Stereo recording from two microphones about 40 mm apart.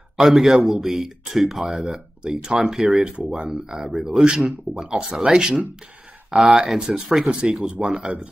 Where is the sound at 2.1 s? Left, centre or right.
Right.